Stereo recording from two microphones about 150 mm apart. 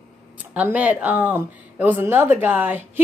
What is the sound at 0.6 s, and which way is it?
A woman's voice, 10° right (ahead or behind).